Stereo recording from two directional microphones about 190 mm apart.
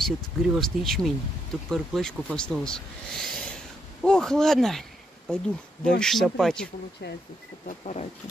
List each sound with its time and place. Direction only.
0.0 s speech: centre (ahead or behind)
7.6 s speech: 35° left (ahead or behind)